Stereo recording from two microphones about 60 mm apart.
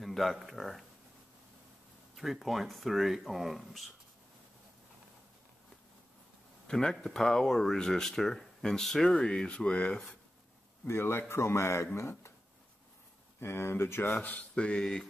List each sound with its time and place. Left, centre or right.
0.0 s speech: centre
2.1 s speech: centre
6.7 s speech: centre
10.9 s speech: left
13.4 s speech: left
14.5 s speech: centre